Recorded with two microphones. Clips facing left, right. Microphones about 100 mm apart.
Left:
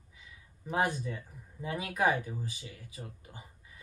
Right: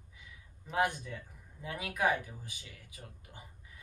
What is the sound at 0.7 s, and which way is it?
A man's voice, 15° left (ahead or behind).